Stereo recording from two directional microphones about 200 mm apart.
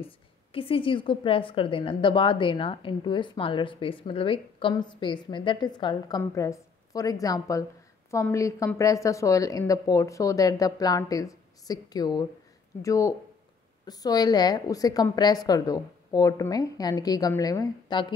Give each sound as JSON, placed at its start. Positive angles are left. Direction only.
{"t": 0.0, "sound": "a woman's voice", "side_deg": 25}